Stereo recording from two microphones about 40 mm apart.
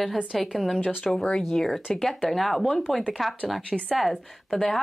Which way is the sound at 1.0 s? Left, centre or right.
Centre.